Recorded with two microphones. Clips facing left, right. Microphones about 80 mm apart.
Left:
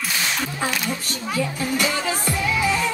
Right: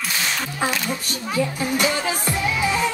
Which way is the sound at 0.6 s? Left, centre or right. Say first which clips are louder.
Right 1 dB; right.